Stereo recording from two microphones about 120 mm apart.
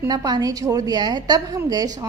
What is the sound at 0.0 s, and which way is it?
A woman's voice, 35° right (ahead or behind).